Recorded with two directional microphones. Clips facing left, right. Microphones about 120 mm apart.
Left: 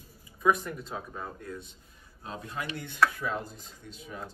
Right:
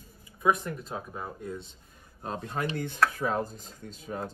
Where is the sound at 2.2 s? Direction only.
50° right (ahead or behind).